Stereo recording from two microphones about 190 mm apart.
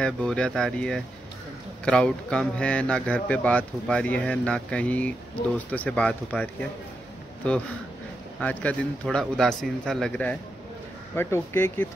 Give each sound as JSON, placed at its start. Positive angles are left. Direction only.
{"t": 0.0, "sound": "a man's voice", "side_deg": 5}
{"t": 8.4, "sound": "a man's voice", "side_deg": 5}